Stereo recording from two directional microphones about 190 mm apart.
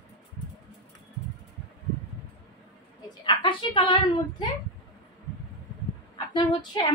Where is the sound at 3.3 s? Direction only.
25° left (ahead or behind).